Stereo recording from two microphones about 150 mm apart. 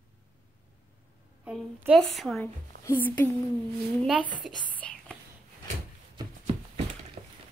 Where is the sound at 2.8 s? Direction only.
10° left (ahead or behind).